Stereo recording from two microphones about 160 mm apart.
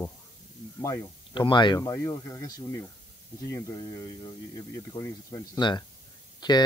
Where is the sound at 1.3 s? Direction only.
30° left (ahead or behind).